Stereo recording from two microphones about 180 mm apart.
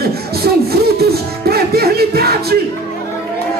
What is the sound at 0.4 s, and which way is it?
Music, 60° right (ahead or behind).